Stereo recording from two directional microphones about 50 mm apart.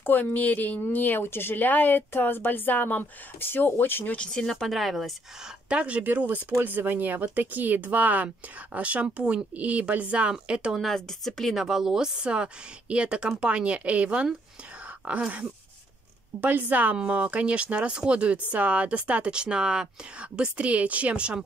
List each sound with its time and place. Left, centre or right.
0.0 s speech: left
4.0 s speech: left
4.3 s speech: centre
5.7 s speech: right
6.0 s speech: right
10.5 s speech: centre
10.8 s speech: centre
11.5 s speech: centre; by 15.4 s right
16.3 s speech: right